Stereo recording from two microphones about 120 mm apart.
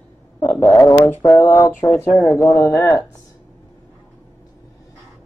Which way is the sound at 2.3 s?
Centre (ahead or behind).